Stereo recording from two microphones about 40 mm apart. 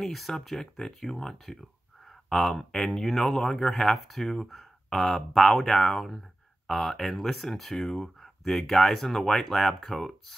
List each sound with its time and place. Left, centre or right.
0.0 s speech: centre